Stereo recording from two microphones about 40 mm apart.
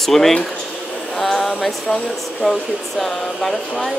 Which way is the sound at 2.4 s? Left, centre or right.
Centre.